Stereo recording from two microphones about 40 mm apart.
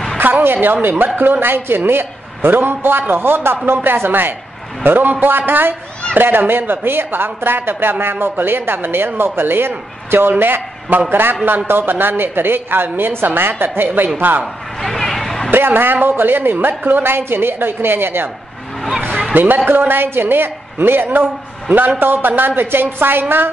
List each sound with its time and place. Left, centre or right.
0.2 s speech: right
10.4 s speech: right
14.4 s a sound: centre
15.5 s speech: right
18.9 s a sound: right
19.3 s a man's voice: right
22.6 s speech: right